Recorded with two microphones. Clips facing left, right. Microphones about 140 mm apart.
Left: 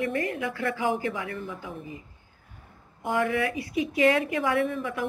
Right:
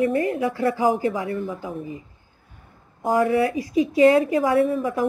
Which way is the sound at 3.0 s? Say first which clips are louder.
Right 7 dB; 35° right (ahead or behind).